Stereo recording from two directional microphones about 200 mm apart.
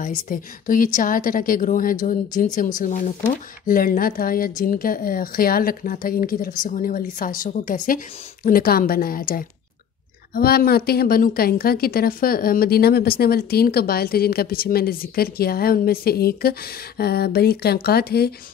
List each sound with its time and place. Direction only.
0.0 s a woman's voice: 45° left (ahead or behind)